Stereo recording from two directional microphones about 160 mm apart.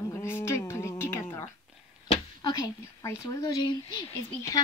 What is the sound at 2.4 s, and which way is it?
A woman's voice, 20° left (ahead or behind).